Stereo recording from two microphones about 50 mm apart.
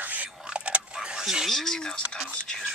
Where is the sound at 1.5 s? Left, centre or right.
Centre.